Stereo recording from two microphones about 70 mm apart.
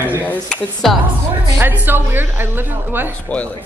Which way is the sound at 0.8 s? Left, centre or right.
Centre.